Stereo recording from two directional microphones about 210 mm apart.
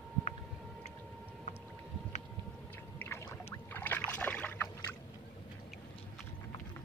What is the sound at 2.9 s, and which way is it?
Boat, 10° left (ahead or behind).